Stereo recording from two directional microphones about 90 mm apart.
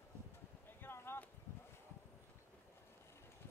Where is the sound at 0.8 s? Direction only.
25° left (ahead or behind).